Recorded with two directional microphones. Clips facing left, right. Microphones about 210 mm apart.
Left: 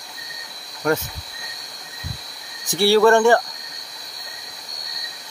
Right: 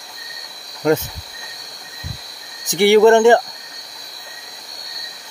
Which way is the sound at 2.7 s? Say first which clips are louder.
Right 4 dB; 20° right (ahead or behind).